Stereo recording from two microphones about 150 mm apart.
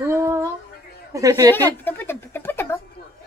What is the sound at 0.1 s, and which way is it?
Music, 20° right (ahead or behind).